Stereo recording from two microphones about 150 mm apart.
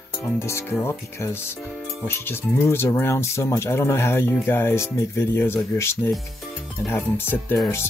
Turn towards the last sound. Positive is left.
turn(degrees=15)  # may be behind; listen again after turning